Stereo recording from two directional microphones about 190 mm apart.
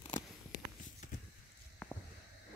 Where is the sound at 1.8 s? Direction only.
5° left (ahead or behind).